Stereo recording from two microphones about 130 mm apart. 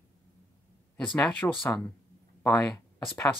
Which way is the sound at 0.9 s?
5° left (ahead or behind).